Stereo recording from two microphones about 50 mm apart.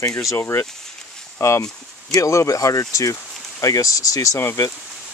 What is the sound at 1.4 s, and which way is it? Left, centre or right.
Speech, left.